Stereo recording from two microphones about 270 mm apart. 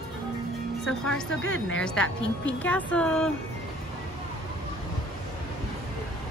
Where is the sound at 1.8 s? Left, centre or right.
Centre.